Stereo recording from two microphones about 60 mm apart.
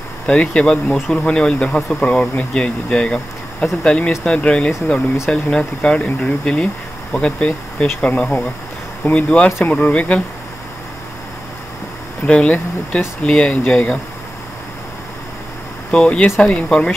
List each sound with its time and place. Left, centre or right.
0.3 s speech: centre
12.3 s speech: centre
15.9 s speech: left